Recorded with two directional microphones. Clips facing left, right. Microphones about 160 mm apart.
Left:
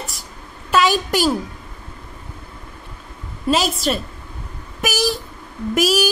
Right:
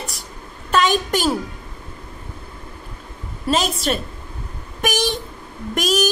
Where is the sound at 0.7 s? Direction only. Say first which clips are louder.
Left 1 dB; 5° left (ahead or behind).